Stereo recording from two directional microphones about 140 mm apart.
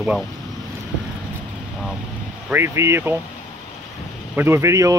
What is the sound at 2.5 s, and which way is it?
Speech, 20° right (ahead or behind).